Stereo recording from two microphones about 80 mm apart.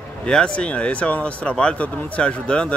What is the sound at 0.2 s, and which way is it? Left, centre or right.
Speech, centre.